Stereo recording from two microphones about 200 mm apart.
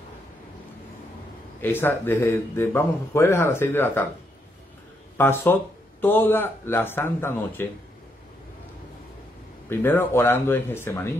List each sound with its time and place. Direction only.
1.6 s a man's voice: 10° left (ahead or behind)
5.1 s a man's voice: 10° left (ahead or behind)
9.7 s a man's voice: 10° left (ahead or behind)